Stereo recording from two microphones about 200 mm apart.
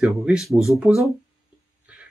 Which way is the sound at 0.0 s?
5° right (ahead or behind).